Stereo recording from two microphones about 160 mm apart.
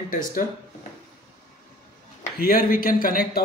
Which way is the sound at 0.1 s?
60° left (ahead or behind).